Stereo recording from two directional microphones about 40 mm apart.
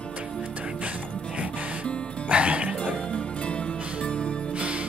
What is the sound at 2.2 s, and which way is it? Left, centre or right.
Music, right.